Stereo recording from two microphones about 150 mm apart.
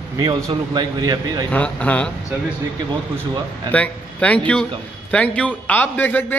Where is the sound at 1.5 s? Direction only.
10° left (ahead or behind).